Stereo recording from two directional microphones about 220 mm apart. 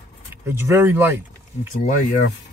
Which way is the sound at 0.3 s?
10° right (ahead or behind).